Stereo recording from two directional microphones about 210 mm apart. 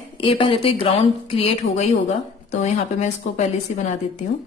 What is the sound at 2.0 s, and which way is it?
Speech, 35° left (ahead or behind).